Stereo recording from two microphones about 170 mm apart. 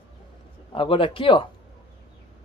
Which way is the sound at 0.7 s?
30° left (ahead or behind).